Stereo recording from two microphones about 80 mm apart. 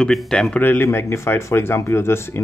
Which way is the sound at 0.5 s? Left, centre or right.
Left.